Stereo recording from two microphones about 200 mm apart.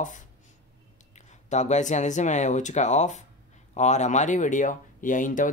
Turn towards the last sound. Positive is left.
turn(degrees=40)  # may be behind; listen again after turning